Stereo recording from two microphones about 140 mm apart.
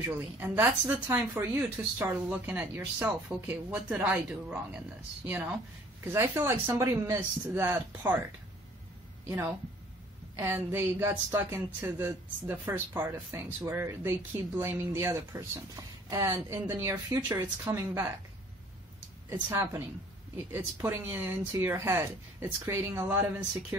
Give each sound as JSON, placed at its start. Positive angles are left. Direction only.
{"t": 0.0, "sound": "a woman's voice", "side_deg": -15}
{"t": 10.3, "sound": "a woman's voice", "side_deg": -15}
{"t": 19.5, "sound": "a woman's voice", "side_deg": -20}